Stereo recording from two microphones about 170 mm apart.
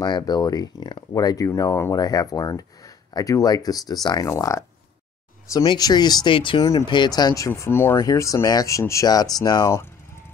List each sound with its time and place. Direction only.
0.0 s speech: 25° left (ahead or behind)